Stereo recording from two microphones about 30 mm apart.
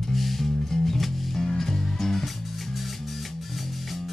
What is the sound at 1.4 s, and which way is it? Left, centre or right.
Music, centre.